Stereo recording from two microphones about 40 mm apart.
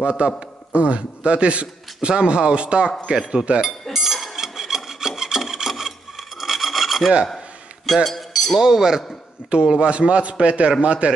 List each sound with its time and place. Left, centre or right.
0.0 s a man's voice: right
3.9 s rub: centre
6.4 s filing: centre
7.8 s chink: centre
8.5 s speech: centre
9.5 s a man's voice: right